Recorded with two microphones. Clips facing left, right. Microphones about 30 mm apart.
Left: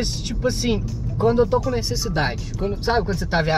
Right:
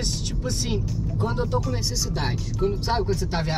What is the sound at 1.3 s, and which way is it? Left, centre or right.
Speech, centre.